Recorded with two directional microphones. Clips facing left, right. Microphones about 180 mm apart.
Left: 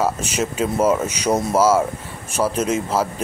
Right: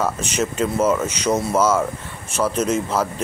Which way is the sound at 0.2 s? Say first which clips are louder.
Even; 10° left (ahead or behind).